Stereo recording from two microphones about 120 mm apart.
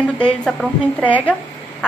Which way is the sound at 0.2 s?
5° left (ahead or behind).